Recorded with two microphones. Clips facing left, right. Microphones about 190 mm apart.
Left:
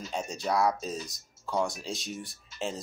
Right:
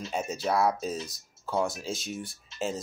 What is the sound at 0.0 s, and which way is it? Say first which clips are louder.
Speech: right 3 dB; 5° right (ahead or behind).